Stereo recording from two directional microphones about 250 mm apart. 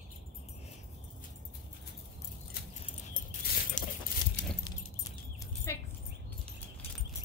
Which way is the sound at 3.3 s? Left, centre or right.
Left.